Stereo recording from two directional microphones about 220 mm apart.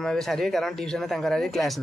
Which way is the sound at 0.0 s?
Centre (ahead or behind).